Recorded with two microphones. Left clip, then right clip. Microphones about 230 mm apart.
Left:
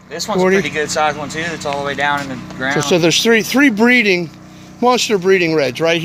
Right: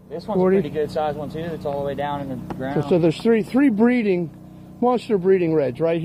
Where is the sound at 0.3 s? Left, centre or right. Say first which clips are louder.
Left 5 dB; centre.